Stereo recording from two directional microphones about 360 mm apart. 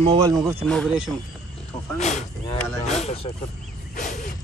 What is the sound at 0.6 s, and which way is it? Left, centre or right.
Speech, centre.